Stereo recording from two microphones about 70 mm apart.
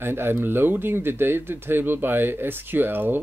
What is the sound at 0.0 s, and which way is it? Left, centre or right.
Speech, right.